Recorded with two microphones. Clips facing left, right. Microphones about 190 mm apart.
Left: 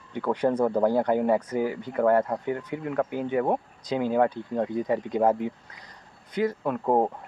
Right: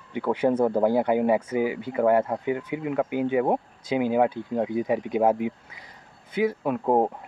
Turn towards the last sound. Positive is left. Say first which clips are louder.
# right 1 dB
turn(degrees=-10)  # may be behind; listen again after turning